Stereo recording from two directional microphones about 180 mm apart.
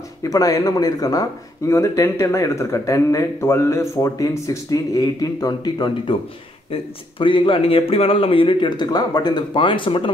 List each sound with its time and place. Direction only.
0.2 s speech: 20° left (ahead or behind)